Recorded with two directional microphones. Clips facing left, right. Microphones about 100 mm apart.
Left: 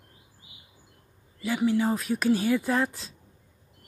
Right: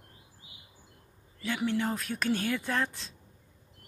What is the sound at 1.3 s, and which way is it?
Speech, 5° left (ahead or behind).